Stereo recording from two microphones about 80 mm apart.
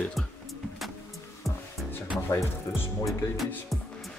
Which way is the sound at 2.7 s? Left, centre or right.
Centre.